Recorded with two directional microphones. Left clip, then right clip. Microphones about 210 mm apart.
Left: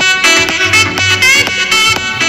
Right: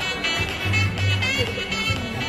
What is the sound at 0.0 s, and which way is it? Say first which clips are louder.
Music: left 16 dB; 50° left (ahead or behind).